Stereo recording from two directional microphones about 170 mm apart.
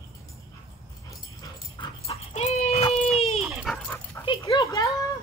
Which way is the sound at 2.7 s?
35° left (ahead or behind).